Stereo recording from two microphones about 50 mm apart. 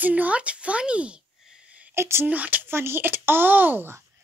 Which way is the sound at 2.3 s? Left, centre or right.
Right.